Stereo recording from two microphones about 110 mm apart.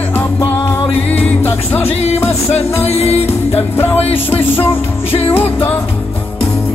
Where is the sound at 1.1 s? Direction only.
15° left (ahead or behind).